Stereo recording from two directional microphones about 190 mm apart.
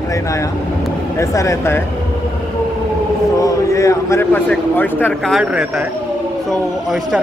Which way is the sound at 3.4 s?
15° left (ahead or behind).